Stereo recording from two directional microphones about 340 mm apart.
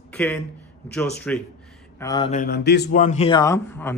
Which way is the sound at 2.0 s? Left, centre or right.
Centre.